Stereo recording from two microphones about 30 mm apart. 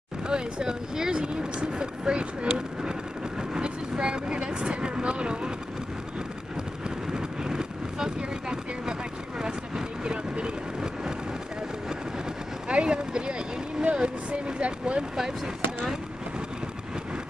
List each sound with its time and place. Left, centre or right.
0.3 s speech: right
2.5 s vehicle: right
7.1 s vehicle: right
12.6 s a sound: right
14.6 s a sound: right
15.1 s speech: right